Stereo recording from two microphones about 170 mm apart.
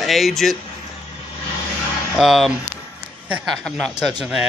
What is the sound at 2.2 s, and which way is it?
Speech, centre (ahead or behind).